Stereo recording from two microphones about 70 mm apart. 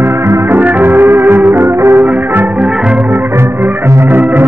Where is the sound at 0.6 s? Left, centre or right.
Right.